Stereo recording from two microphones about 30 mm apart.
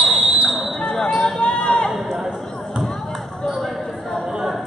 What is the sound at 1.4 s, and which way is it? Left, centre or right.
Run, left.